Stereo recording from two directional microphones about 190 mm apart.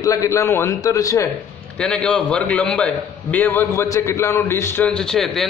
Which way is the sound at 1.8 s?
5° left (ahead or behind).